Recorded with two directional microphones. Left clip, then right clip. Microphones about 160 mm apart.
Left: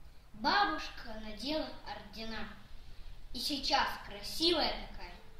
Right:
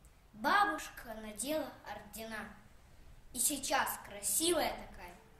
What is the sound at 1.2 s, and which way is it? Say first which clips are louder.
A woman's voice: left 1 dB; 15° right (ahead or behind).